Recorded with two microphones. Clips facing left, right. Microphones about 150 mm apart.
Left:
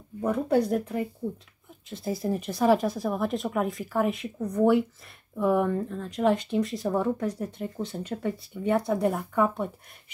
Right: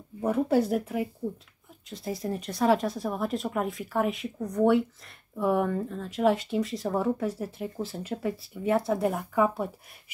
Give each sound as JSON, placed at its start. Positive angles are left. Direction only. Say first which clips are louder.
{"t": 0.2, "sound": "speech", "louder": "even", "side_deg": -5}